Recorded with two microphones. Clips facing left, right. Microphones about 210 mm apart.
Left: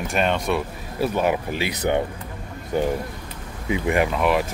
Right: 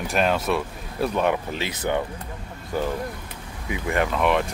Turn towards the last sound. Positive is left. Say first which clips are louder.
# left 1 dB
turn(degrees=5)  # may be behind; listen again after turning